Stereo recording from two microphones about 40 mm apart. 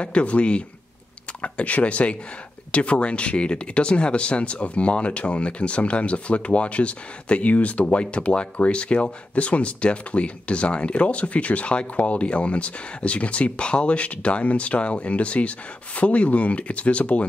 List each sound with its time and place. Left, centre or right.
0.0 s speech: left